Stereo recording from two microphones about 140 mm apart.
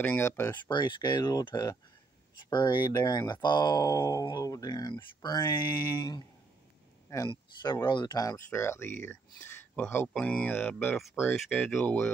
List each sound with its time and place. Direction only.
0.0 s speech: 15° left (ahead or behind)
0.7 s speech: 35° left (ahead or behind)
7.2 s speech: 30° left (ahead or behind); by 12.1 s 5° left (ahead or behind)